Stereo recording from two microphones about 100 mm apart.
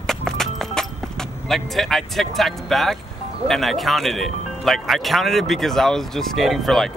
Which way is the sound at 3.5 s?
Centre (ahead or behind).